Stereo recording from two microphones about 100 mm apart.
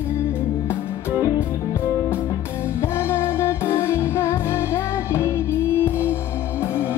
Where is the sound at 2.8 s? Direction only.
25° left (ahead or behind).